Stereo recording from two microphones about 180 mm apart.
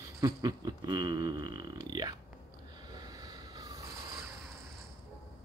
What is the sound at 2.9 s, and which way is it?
Train, 20° right (ahead or behind).